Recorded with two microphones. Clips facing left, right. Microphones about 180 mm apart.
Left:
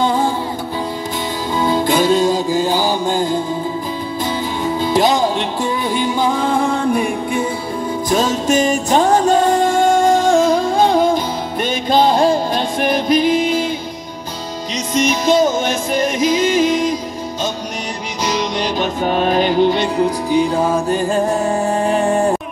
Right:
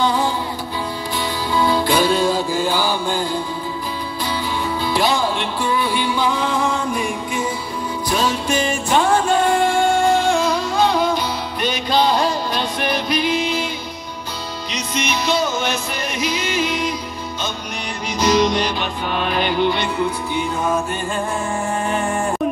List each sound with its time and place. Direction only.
0.0 s music: 50° left (ahead or behind)
1.5 s music: 20° left (ahead or behind)
2.0 s music: 45° left (ahead or behind)
2.2 s mantra: 20° left (ahead or behind)
2.6 s mantra: 40° left (ahead or behind)
4.9 s music: 45° left (ahead or behind)
8.1 s music: 45° left (ahead or behind)
15.0 s music: 45° left (ahead or behind)
18.8 s music: 40° left (ahead or behind)